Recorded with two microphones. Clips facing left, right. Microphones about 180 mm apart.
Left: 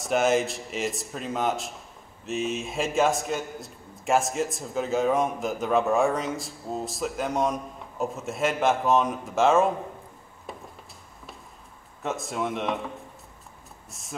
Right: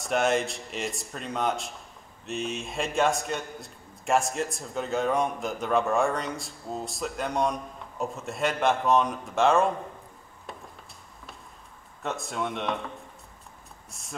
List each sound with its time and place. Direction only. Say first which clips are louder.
0.0 s a man's voice: left 2 dB; centre (ahead or behind)
12.0 s a man's voice: left 2 dB; centre (ahead or behind)